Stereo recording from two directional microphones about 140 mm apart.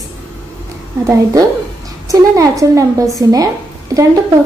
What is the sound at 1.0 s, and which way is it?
A woman's voice, 25° right (ahead or behind).